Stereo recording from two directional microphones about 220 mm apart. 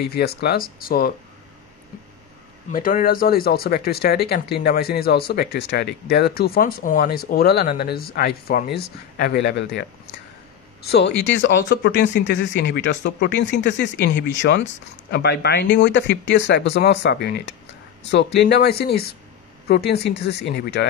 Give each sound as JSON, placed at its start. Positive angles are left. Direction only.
{"t": 0.0, "sound": "speech", "side_deg": 45}
{"t": 2.7, "sound": "speech", "side_deg": 40}
{"t": 10.8, "sound": "speech", "side_deg": 50}